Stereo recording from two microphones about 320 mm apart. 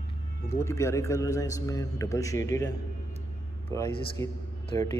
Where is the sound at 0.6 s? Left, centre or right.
Centre.